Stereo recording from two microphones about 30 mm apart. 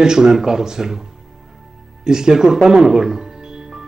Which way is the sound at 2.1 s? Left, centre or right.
Centre.